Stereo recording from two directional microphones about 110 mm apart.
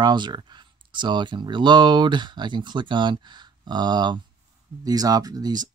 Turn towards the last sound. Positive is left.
turn(degrees=-40)  # may be behind; listen again after turning